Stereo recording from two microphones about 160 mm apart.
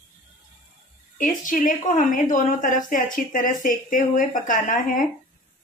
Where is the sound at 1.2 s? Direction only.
55° left (ahead or behind).